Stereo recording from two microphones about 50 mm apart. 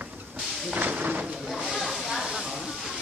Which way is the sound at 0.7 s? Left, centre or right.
Right.